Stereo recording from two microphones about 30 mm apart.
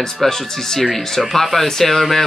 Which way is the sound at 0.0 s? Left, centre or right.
Centre.